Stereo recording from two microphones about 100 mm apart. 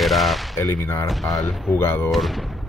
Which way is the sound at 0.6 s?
30° left (ahead or behind).